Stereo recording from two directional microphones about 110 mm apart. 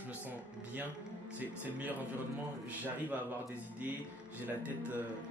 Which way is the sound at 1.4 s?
15° right (ahead or behind).